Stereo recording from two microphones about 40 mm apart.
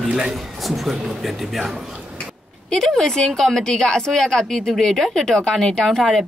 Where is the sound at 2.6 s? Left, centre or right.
Centre.